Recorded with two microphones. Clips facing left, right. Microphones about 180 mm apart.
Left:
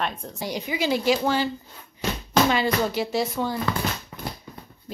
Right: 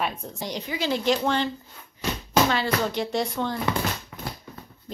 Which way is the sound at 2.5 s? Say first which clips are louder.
Left 2 dB; 15° left (ahead or behind).